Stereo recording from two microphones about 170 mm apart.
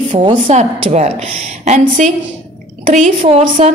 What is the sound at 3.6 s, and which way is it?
Speech, 40° right (ahead or behind).